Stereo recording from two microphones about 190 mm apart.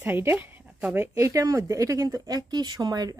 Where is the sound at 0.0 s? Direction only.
10° right (ahead or behind).